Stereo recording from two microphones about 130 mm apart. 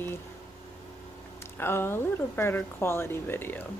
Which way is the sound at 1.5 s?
15° left (ahead or behind).